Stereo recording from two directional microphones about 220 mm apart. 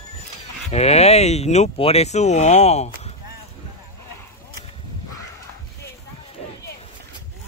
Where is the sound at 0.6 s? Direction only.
30° left (ahead or behind).